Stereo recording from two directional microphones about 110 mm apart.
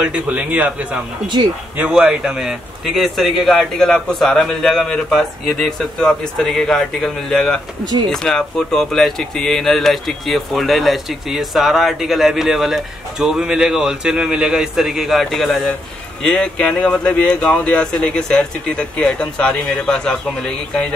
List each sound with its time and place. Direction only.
0.0 s a man's voice: 10° right (ahead or behind)
1.2 s speech: 40° right (ahead or behind)
1.8 s speech: 10° right (ahead or behind); by 20.8 s 5° left (ahead or behind)